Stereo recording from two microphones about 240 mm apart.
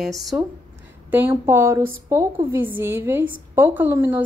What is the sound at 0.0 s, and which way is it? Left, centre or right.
Speech, centre.